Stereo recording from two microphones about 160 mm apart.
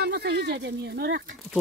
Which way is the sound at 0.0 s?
90° right.